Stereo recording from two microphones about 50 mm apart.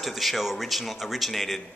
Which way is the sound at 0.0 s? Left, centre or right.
Centre.